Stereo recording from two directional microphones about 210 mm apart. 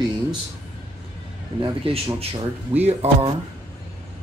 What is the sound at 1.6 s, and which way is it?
A man's voice, 25° right (ahead or behind).